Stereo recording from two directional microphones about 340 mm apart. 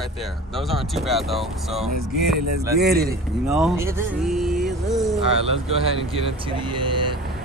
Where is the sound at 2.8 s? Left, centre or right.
Right.